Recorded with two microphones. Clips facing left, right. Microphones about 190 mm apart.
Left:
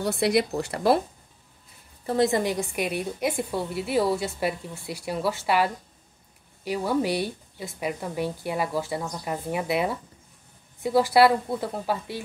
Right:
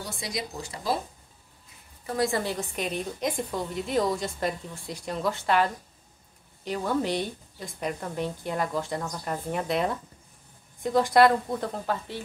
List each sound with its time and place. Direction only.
0.0 s speech: 65° left (ahead or behind)
2.0 s a woman's voice: 20° left (ahead or behind)